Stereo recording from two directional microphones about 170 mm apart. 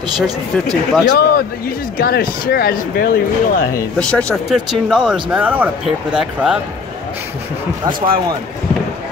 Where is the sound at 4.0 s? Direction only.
5° left (ahead or behind).